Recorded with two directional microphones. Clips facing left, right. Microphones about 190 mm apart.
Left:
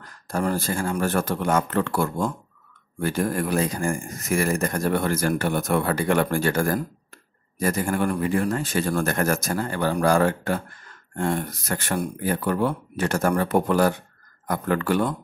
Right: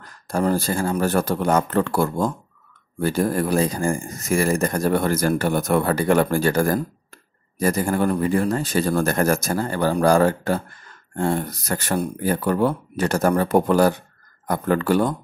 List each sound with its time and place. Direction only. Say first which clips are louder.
0.3 s speech: right 4 dB; 35° right (ahead or behind)